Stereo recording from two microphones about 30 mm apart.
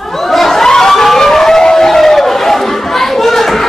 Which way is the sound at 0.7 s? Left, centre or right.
Centre.